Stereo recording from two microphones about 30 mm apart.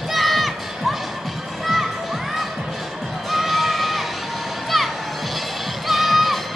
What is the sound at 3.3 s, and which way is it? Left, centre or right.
Music, centre.